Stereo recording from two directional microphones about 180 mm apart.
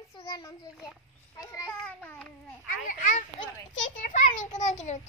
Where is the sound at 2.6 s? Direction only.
45° left (ahead or behind).